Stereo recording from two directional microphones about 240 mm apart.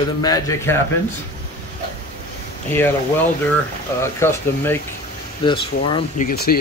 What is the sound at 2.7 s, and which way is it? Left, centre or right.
Speech, centre.